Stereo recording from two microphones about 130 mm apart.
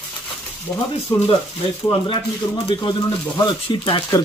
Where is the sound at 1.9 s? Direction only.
40° left (ahead or behind).